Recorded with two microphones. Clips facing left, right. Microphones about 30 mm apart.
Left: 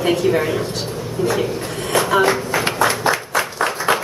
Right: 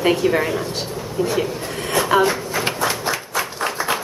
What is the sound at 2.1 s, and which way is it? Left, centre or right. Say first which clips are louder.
Speech: left 2 dB; centre.